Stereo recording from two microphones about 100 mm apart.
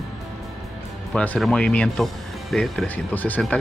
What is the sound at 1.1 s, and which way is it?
Speech, 10° left (ahead or behind).